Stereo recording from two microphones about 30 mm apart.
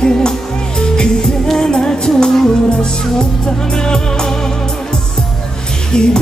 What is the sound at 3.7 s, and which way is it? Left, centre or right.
Music, left.